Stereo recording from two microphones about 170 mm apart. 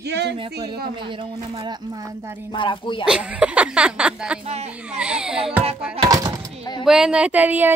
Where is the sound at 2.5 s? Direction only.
30° left (ahead or behind).